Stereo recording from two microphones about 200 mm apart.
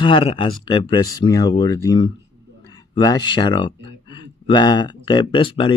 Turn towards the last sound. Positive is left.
turn(degrees=25)  # may be behind; listen again after turning